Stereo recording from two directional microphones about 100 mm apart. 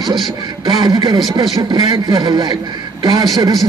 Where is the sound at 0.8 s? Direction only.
45° right (ahead or behind).